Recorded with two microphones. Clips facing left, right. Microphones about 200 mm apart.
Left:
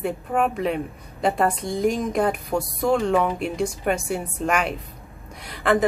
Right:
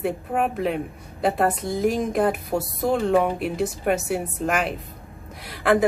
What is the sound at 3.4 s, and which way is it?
Speech, 5° right (ahead or behind).